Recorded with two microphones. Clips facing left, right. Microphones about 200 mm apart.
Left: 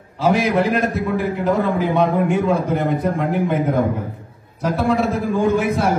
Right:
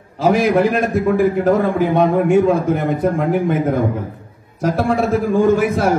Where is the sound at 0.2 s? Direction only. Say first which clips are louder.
Right 3 dB; 50° right (ahead or behind).